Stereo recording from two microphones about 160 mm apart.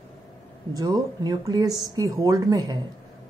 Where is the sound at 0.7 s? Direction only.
25° right (ahead or behind).